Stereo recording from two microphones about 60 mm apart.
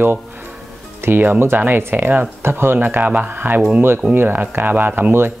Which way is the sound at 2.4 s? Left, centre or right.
Right.